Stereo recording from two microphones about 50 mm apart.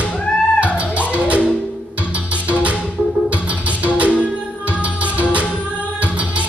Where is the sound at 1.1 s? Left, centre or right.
Right.